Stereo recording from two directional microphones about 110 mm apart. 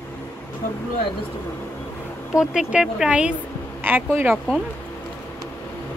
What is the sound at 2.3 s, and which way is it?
Speech, 5° right (ahead or behind).